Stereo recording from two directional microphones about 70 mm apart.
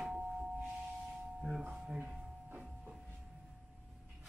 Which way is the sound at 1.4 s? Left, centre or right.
Centre.